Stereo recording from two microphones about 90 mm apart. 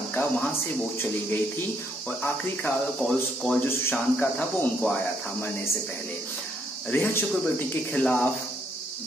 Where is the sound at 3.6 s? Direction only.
25° left (ahead or behind).